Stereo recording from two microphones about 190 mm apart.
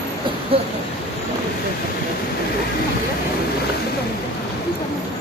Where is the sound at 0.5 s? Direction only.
30° right (ahead or behind).